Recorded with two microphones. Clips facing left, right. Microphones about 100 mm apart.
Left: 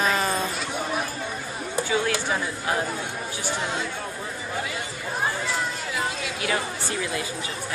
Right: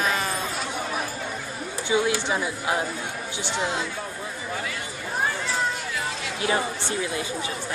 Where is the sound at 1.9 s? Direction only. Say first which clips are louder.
Right 3 dB; 15° right (ahead or behind).